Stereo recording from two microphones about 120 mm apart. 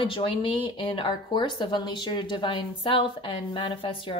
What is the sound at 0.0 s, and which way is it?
A woman's voice, 50° left (ahead or behind).